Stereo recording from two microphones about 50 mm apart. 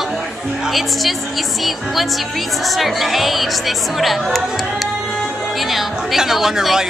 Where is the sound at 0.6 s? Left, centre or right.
Centre.